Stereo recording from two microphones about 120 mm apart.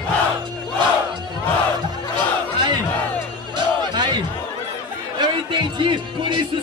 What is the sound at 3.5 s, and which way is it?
Crowd, 40° right (ahead or behind).